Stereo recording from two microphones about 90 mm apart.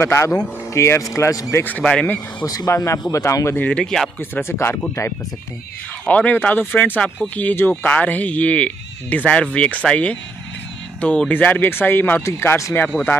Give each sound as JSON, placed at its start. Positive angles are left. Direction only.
{"t": 0.0, "sound": "speech", "side_deg": 30}
{"t": 1.5, "sound": "speech", "side_deg": 20}
{"t": 1.8, "sound": "speech", "side_deg": 10}
{"t": 2.4, "sound": "speech", "side_deg": 40}
{"t": 3.5, "sound": "speech", "side_deg": 15}
{"t": 3.8, "sound": "speech", "side_deg": 5}
{"t": 4.2, "sound": "speech", "side_deg": 25}
{"t": 6.0, "sound": "speech", "side_deg": 15}
{"t": 12.8, "sound": "speech", "side_deg": 15}